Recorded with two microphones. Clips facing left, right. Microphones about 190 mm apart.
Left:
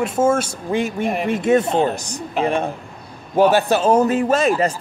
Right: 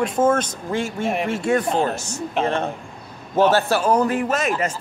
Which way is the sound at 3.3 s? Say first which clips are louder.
Left 2 dB; 15° left (ahead or behind).